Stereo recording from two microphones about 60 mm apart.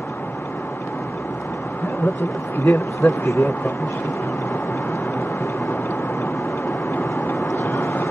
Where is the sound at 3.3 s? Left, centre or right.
Left.